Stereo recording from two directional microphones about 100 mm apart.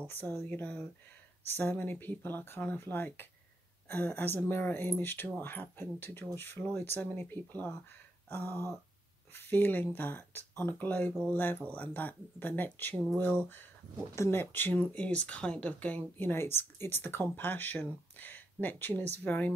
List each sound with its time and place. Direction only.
0.1 s speech: 20° left (ahead or behind)
14.1 s speech: 25° left (ahead or behind)